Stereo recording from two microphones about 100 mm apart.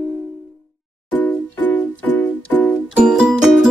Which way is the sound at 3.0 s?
5° right (ahead or behind).